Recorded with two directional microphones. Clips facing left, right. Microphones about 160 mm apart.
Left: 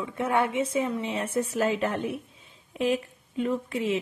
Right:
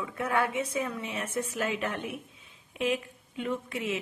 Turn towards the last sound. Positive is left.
turn(degrees=30)  # may be behind; listen again after turning